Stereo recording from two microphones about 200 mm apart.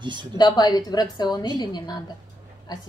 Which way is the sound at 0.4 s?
20° left (ahead or behind).